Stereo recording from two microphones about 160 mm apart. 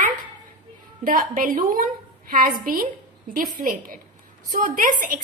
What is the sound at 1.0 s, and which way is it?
A woman's voice, 60° right (ahead or behind).